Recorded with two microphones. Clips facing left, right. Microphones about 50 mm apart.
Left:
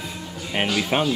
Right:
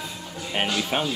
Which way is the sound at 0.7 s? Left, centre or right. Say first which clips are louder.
Left 6 dB; centre.